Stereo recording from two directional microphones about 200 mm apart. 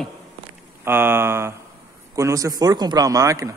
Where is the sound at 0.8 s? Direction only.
10° right (ahead or behind).